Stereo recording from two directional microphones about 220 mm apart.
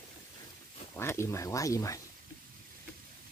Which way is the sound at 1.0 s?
10° left (ahead or behind).